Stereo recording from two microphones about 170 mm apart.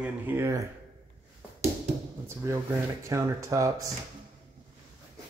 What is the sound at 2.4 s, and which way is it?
Speech, 15° right (ahead or behind).